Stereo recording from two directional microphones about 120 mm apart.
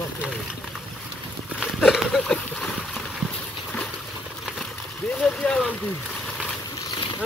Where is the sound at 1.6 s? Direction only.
Centre (ahead or behind).